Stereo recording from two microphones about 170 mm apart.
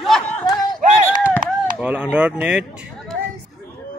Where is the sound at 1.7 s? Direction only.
5° right (ahead or behind).